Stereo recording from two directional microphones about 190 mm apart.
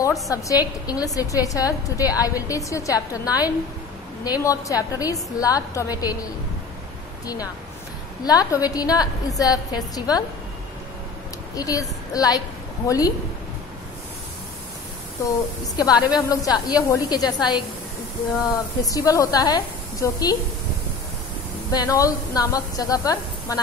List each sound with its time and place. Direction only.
0.3 s a woman's voice: 20° left (ahead or behind)
8.3 s a woman's voice: 20° left (ahead or behind)
11.5 s a woman's voice: 20° left (ahead or behind)
15.2 s a woman's voice: 20° left (ahead or behind)
18.9 s a woman's voice: 20° left (ahead or behind)
21.7 s a woman's voice: 20° left (ahead or behind)